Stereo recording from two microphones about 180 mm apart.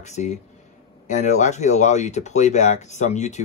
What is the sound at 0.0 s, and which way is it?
Speech, 40° left (ahead or behind).